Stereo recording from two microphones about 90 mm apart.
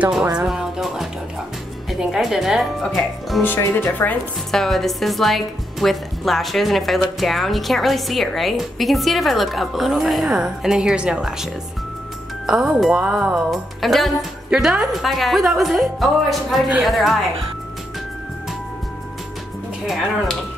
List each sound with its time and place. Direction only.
0.2 s speech: 15° right (ahead or behind)
0.5 s music: 5° right (ahead or behind)
1.9 s a woman's voice: 5° right (ahead or behind)
3.4 s speech: 25° left (ahead or behind)
4.5 s a woman's voice: 5° left (ahead or behind)
12.4 s a woman's voice: 5° right (ahead or behind)